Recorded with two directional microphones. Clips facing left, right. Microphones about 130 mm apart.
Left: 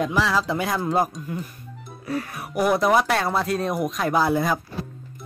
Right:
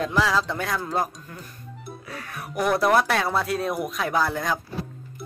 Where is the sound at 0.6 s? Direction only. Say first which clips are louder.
Left 4 dB; 20° left (ahead or behind).